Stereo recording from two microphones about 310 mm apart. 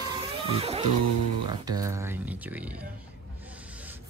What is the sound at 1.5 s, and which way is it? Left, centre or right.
Speech, centre.